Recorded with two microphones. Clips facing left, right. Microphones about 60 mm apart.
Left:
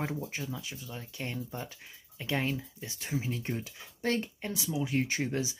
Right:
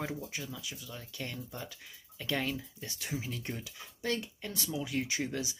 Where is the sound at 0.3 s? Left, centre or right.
Left.